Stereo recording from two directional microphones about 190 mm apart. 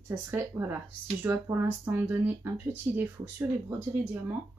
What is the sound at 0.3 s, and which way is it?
Speech, 10° right (ahead or behind).